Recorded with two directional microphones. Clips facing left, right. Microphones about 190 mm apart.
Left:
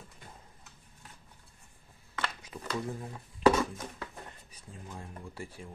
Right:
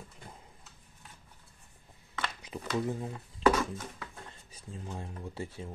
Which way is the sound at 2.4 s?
20° right (ahead or behind).